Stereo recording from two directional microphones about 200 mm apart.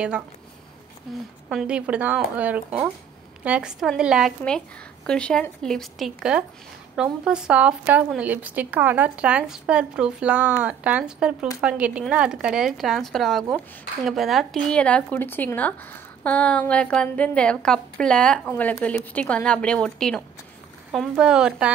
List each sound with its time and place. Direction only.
1.5 s speech: 5° right (ahead or behind)